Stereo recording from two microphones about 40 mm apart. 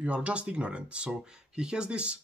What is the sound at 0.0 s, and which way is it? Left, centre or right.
Speech, right.